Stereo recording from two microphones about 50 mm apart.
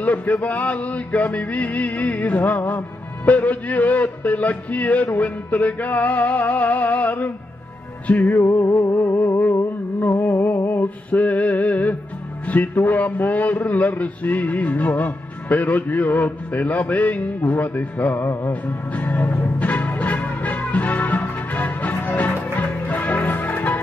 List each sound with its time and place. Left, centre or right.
0.0 s a man's voice: left
8.6 s music: left
8.9 s a sound: left
11.1 s a man's voice: left
18.2 s music: left
18.5 s music: left